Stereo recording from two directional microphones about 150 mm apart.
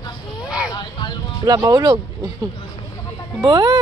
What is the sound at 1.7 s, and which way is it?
Speech, 25° right (ahead or behind).